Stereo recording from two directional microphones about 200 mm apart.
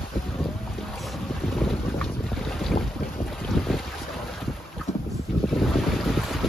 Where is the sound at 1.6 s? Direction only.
Centre (ahead or behind).